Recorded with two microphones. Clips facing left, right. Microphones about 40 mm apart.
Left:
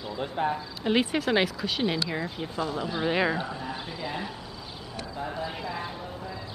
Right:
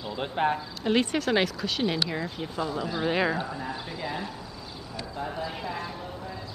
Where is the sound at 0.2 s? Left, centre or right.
Right.